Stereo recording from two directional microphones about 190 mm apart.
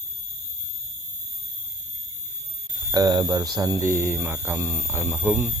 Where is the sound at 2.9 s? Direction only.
20° right (ahead or behind).